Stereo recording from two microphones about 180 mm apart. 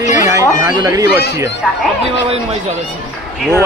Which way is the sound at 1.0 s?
65° left (ahead or behind).